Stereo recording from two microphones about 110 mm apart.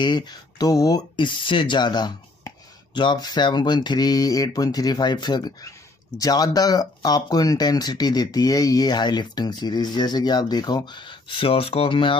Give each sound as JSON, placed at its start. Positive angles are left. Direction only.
{"t": 0.0, "sound": "speech", "side_deg": 40}